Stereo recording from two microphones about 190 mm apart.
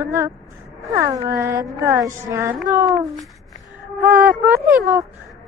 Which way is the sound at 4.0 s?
10° right (ahead or behind).